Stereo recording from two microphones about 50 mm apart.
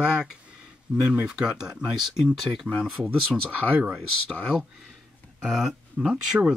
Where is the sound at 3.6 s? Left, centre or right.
Left.